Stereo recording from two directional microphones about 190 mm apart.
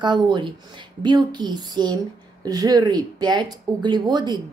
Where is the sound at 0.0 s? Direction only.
25° right (ahead or behind).